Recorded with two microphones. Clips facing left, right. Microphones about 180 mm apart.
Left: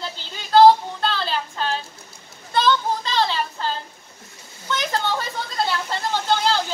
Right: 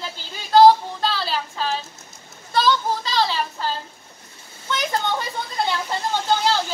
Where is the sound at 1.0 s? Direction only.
5° right (ahead or behind).